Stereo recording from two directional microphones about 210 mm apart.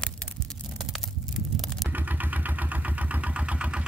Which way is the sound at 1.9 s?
10° right (ahead or behind).